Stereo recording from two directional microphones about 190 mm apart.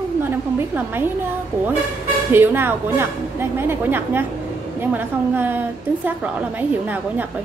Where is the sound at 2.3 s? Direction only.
10° right (ahead or behind).